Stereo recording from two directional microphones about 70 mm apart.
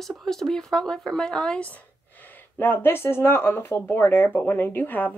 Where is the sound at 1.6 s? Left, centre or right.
Left.